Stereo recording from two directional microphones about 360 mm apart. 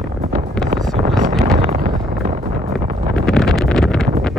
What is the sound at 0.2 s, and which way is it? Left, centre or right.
Wind noise, centre.